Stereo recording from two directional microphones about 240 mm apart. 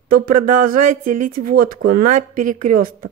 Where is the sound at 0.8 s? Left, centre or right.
Right.